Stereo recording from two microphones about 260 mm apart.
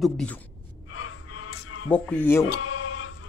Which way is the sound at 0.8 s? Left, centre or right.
Left.